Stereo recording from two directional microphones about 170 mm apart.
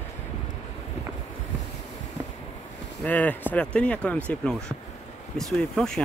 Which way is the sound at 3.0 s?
10° left (ahead or behind).